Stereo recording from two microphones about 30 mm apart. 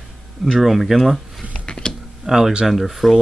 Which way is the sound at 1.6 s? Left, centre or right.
Left.